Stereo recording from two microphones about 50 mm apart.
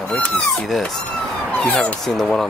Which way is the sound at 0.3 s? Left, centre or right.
Centre.